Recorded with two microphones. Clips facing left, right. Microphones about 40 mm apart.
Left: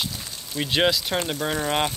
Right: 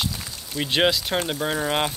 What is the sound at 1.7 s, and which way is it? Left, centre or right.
Speech, centre.